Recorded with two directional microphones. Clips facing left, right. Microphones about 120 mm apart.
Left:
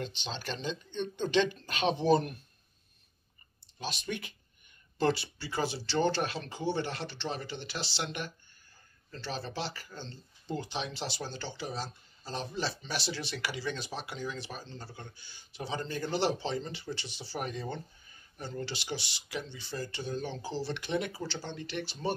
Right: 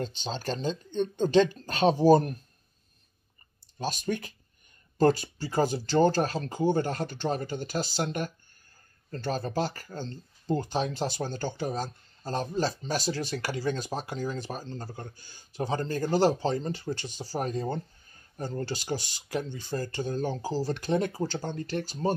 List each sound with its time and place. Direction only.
0.0 s speech: 40° right (ahead or behind)
3.7 s speech: 45° right (ahead or behind)